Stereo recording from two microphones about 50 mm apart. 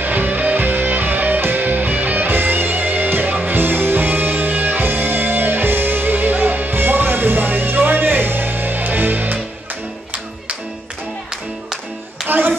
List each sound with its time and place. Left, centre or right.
0.0 s music: right
12.3 s clapping: right